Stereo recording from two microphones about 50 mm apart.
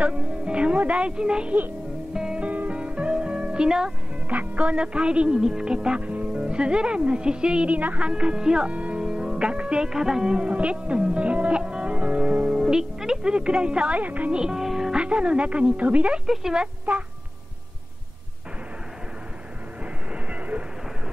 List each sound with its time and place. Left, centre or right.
0.0 s music: right
0.7 s a woman's voice: right
2.1 s music: centre
2.4 s music: right
4.3 s speech: right
8.1 s speech: centre
12.6 s speech: centre
13.9 s a woman's voice: right
14.3 s music: centre
15.0 s speech: right
16.3 s speech: centre
19.8 s vehicle: right